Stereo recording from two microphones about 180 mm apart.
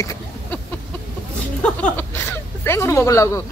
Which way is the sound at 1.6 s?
10° left (ahead or behind).